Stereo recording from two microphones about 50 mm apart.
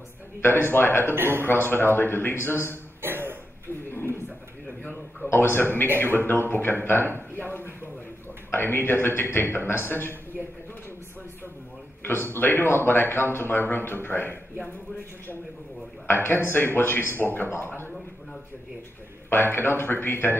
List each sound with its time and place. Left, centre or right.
0.4 s speech: left
1.1 s a man's voice: right
1.4 s speech: left
3.0 s cough: right
3.9 s a sound: left
5.3 s speech: left
7.3 s a sound: left
8.5 s speech: left
12.0 s speech: left
16.1 s a man's voice: left
19.2 s speech: left